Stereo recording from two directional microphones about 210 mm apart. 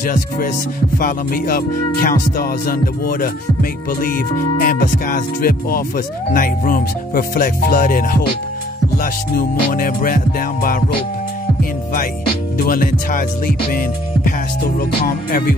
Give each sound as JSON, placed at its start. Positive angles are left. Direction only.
{"t": 0.0, "sound": "music", "side_deg": 40}
{"t": 12.5, "sound": "music", "side_deg": 45}